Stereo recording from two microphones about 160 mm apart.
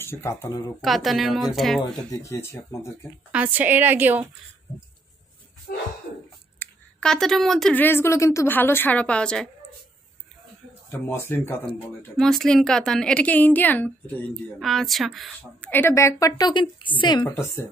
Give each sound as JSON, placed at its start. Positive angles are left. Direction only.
{"t": 0.0, "sound": "speech", "side_deg": 15}
{"t": 0.7, "sound": "a woman's voice", "side_deg": 0}
{"t": 2.0, "sound": "speech", "side_deg": 20}
{"t": 3.3, "sound": "a woman's voice", "side_deg": -10}
{"t": 5.7, "sound": "a sound", "side_deg": 75}
{"t": 6.6, "sound": "speech", "side_deg": 5}
{"t": 10.9, "sound": "speech", "side_deg": 15}
{"t": 12.2, "sound": "a woman's voice", "side_deg": 5}
{"t": 15.7, "sound": "a woman's voice", "side_deg": 15}
{"t": 17.3, "sound": "speech", "side_deg": 15}